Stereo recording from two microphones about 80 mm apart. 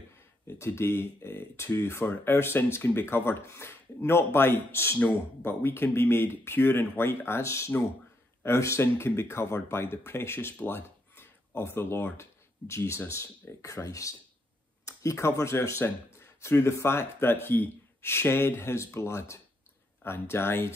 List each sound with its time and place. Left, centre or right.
0.5 s speech: left